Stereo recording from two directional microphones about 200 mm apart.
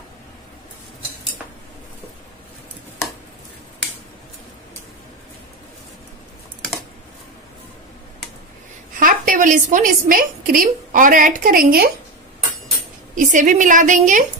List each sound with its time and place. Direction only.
8.9 s a woman's voice: 40° right (ahead or behind)
13.1 s a woman's voice: 40° right (ahead or behind)